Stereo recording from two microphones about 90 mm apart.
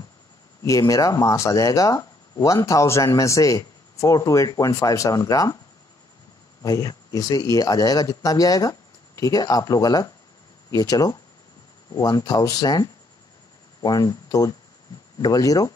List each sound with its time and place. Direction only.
0.7 s speech: 40° left (ahead or behind)
6.6 s speech: 40° left (ahead or behind)